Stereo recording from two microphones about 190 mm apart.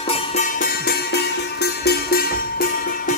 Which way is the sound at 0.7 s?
60° left (ahead or behind).